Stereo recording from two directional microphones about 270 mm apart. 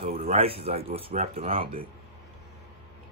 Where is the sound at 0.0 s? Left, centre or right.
Right.